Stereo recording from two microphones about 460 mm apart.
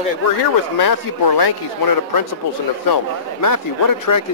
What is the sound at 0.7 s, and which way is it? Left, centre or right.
A man's voice, left.